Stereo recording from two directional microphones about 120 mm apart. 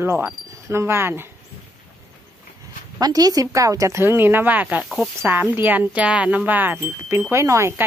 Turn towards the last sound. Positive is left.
turn(degrees=-25)  # may be behind; listen again after turning